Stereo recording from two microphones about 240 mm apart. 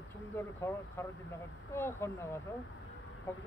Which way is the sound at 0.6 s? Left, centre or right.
Centre.